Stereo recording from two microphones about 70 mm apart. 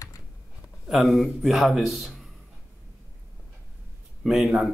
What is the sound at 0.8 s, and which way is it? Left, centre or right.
A man's voice, centre.